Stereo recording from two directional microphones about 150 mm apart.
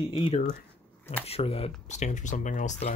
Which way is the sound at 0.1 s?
40° left (ahead or behind).